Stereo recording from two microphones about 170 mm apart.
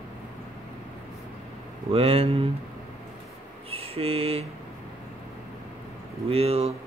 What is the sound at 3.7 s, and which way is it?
Mantra, 35° right (ahead or behind).